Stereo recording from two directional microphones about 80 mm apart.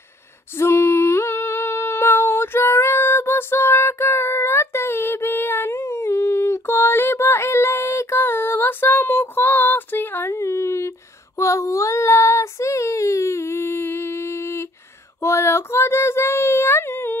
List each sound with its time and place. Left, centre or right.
0.6 s humming: left
10.3 s a sound: left
11.3 s child singing: left
15.2 s female singing: left